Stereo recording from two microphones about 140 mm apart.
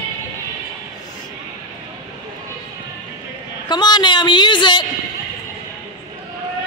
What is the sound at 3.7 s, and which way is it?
A man's voice, 30° left (ahead or behind).